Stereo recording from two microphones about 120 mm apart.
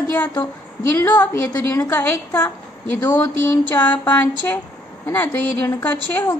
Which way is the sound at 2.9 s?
15° left (ahead or behind).